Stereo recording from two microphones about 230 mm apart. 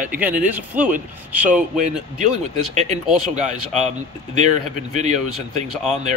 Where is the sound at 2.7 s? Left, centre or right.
Right.